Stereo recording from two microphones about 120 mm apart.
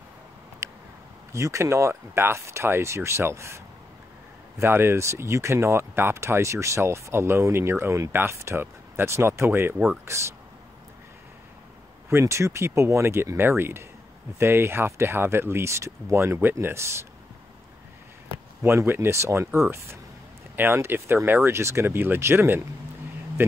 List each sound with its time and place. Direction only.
0.6 s a sound: 25° right (ahead or behind)
1.3 s speech: 25° right (ahead or behind)
12.1 s speech: 25° right (ahead or behind)
18.6 s speech: 20° right (ahead or behind)